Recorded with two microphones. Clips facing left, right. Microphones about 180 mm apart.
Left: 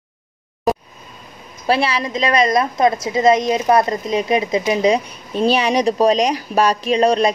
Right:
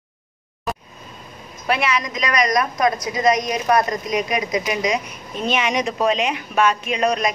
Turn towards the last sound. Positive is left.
turn(degrees=30)  # may be behind; listen again after turning